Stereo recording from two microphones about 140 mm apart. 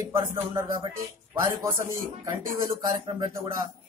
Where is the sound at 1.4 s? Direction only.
25° right (ahead or behind).